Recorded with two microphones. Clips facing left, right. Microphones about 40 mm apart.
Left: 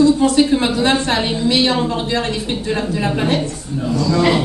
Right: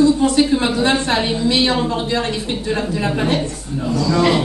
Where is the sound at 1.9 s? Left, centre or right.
Left.